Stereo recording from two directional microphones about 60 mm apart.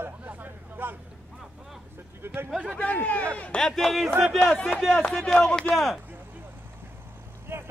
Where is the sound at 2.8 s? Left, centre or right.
Left.